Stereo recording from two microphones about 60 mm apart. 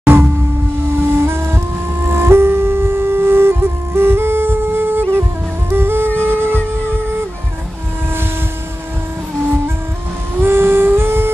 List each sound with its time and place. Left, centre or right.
0.0 s a sound: right
0.9 s music: right
10.4 s music: right